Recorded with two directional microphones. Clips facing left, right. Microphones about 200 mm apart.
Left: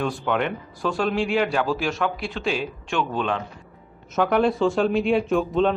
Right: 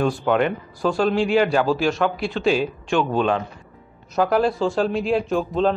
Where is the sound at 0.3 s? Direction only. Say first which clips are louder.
Right 4 dB; centre (ahead or behind).